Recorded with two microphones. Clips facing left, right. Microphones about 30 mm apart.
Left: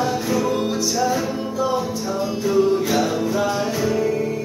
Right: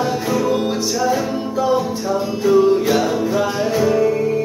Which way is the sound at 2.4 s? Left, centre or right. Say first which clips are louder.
Right 5 dB; centre.